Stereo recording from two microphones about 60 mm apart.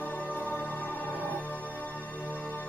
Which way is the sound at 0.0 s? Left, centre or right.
Left.